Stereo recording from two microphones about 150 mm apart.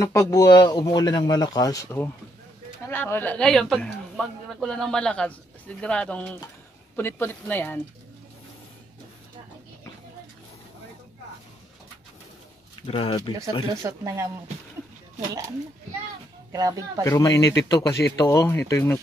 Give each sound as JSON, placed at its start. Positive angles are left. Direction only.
{"t": 0.0, "sound": "speech", "side_deg": 20}
{"t": 12.8, "sound": "speech", "side_deg": 40}
{"t": 13.8, "sound": "speech", "side_deg": -20}
{"t": 16.5, "sound": "speech", "side_deg": -25}
{"t": 17.0, "sound": "speech", "side_deg": 20}